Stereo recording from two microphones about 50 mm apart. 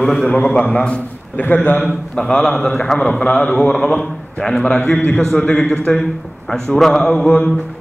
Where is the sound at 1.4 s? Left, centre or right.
Left.